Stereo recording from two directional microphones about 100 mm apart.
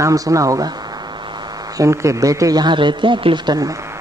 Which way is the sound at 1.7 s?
30° right (ahead or behind).